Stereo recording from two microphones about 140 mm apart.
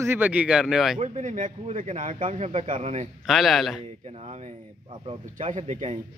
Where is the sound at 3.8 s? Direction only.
50° right (ahead or behind).